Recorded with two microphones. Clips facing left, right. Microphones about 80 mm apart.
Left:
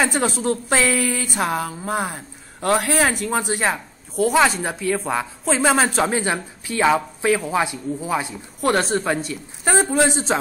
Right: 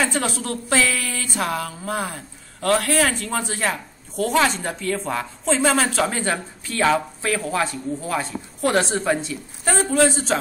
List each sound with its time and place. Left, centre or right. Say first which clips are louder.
0.0 s a woman's voice: left 3 dB; left
8.6 s a woman's voice: left 1 dB; centre
9.8 s a woman's voice: even; left